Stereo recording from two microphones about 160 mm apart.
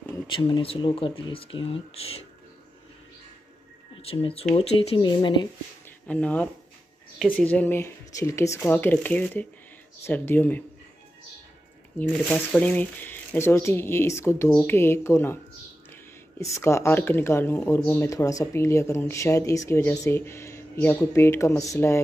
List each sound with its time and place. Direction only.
0.4 s speech: 35° left (ahead or behind)
3.9 s speech: 35° left (ahead or behind)
6.0 s speech: 10° left (ahead or behind)
12.0 s speech: 10° left (ahead or behind)